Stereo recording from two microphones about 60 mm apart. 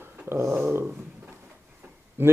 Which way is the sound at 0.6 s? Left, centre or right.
Right.